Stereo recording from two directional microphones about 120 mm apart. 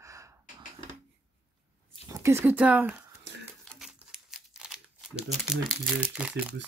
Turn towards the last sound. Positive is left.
turn(degrees=-10)  # may be behind; listen again after turning